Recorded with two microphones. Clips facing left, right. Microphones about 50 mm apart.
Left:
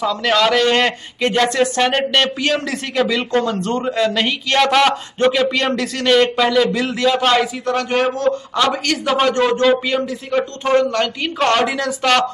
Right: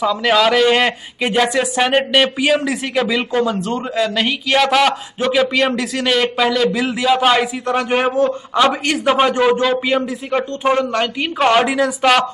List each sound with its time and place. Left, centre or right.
0.0 s speech: centre